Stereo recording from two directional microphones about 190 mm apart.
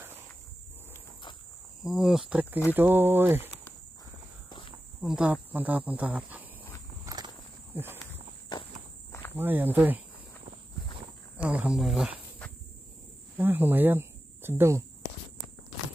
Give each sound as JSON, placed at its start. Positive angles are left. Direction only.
{"t": 1.8, "sound": "cricket", "side_deg": 0}
{"t": 2.7, "sound": "speech", "side_deg": -10}
{"t": 5.0, "sound": "speech", "side_deg": -5}
{"t": 7.1, "sound": "walk", "side_deg": -15}
{"t": 7.7, "sound": "cricket", "side_deg": -10}
{"t": 9.4, "sound": "speech", "side_deg": -10}
{"t": 11.3, "sound": "speech", "side_deg": -5}
{"t": 13.4, "sound": "speech", "side_deg": -10}